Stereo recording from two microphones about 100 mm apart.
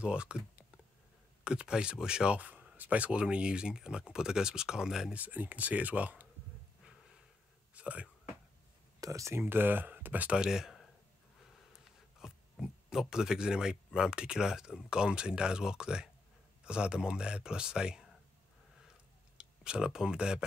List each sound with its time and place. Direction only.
0.0 s speech: 10° right (ahead or behind)
5.2 s speech: 15° right (ahead or behind)
7.7 s a sound: 15° right (ahead or behind)
9.0 s speech: 30° right (ahead or behind)
9.4 s speech: 20° right (ahead or behind); by 10.9 s 5° right (ahead or behind)
12.2 s speech: 5° right (ahead or behind)
19.3 s speech: 10° right (ahead or behind)